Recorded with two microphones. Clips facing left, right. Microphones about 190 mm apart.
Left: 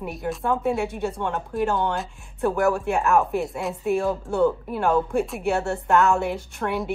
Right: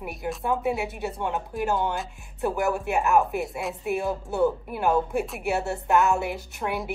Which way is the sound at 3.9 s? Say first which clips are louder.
Left 4 dB; 20° right (ahead or behind).